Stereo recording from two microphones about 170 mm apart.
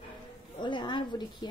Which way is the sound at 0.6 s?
30° left (ahead or behind).